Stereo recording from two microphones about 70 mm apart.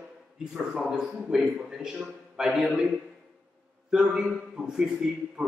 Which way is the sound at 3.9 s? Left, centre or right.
Centre.